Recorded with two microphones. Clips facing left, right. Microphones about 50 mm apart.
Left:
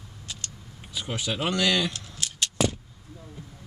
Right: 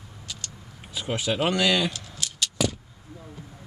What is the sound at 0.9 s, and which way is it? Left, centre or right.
Speech, centre.